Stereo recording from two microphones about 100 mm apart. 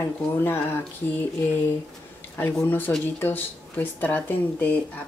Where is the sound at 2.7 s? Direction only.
20° left (ahead or behind).